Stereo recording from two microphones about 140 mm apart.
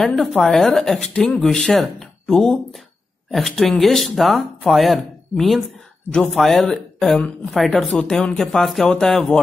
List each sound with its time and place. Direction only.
0.0 s speech: centre (ahead or behind)